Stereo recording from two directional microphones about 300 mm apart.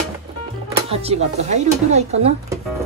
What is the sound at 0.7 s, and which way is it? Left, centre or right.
Speech, centre.